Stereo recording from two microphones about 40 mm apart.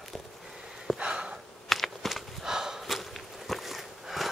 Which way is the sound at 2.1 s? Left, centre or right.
Centre.